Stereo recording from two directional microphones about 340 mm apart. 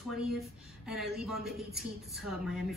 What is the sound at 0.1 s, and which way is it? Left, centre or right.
A woman's voice, centre.